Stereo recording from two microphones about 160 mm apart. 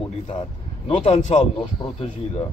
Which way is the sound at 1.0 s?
40° left (ahead or behind).